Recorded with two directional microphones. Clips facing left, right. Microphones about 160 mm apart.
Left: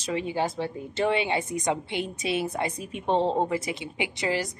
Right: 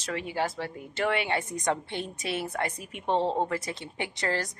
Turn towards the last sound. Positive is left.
turn(degrees=10)  # may be behind; listen again after turning